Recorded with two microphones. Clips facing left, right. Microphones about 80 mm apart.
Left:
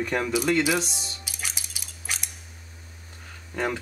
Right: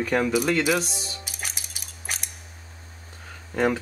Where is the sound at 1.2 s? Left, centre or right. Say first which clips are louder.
Even; right.